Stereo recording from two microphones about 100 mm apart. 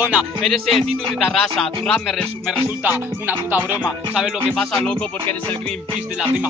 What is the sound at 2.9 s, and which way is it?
Music, 20° right (ahead or behind).